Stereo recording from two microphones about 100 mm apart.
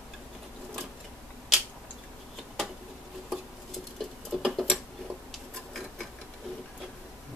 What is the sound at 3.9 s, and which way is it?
Tick-tock, centre (ahead or behind).